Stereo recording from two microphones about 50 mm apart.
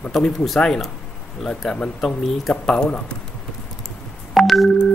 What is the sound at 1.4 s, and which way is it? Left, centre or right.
Speech, centre.